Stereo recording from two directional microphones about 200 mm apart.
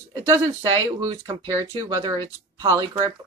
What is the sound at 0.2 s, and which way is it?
Speech, 20° right (ahead or behind).